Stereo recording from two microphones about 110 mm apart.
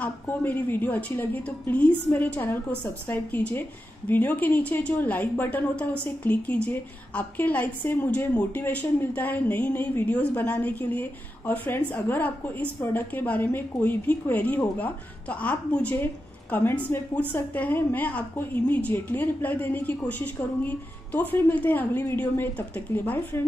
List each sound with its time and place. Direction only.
0.0 s a woman's voice: 15° left (ahead or behind)